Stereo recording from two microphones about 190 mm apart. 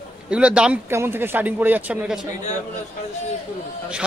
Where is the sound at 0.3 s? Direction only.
5° right (ahead or behind).